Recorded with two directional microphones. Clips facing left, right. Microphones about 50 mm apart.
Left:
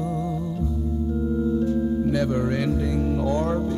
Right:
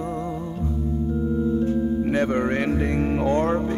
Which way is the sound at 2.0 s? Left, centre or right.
Right.